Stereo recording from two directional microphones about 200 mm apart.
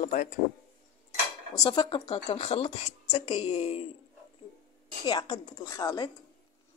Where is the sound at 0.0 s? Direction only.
40° left (ahead or behind).